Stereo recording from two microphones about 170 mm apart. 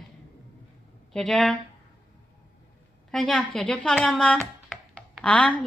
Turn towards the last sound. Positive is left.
turn(degrees=5)  # may be behind; listen again after turning